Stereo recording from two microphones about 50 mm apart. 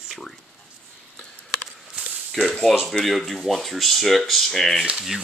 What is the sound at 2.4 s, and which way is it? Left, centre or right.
Speech, centre.